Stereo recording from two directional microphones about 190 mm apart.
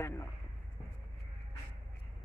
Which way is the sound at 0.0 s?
10° left (ahead or behind).